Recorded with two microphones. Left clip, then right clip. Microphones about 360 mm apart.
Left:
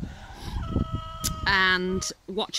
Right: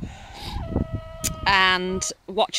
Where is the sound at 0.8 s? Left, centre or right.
Right.